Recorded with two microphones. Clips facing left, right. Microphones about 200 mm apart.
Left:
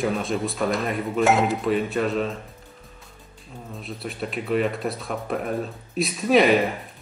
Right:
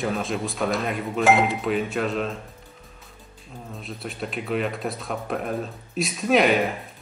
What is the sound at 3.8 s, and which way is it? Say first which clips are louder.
Speech: left 2 dB; centre (ahead or behind).